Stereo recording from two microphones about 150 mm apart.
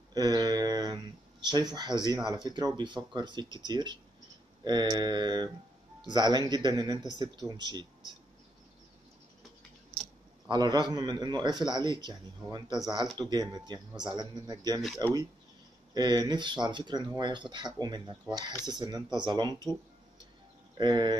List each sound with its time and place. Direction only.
0.1 s a man's voice: 25° right (ahead or behind)
10.5 s a man's voice: 30° right (ahead or behind)
20.7 s speech: 30° right (ahead or behind)